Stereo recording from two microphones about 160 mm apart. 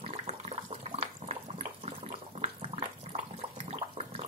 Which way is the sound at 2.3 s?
40° right (ahead or behind).